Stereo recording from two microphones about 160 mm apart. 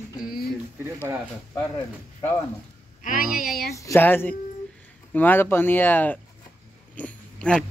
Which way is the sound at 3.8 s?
15° left (ahead or behind).